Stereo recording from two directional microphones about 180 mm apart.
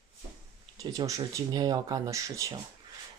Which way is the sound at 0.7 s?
20° right (ahead or behind).